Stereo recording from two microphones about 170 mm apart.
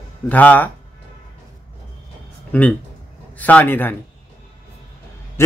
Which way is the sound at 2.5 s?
10° left (ahead or behind).